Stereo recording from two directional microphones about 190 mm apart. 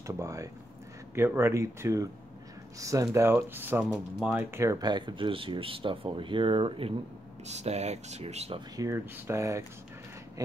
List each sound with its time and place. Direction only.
0.0 s speech: 15° right (ahead or behind); by 8.6 s 30° right (ahead or behind)
8.7 s speech: 15° right (ahead or behind)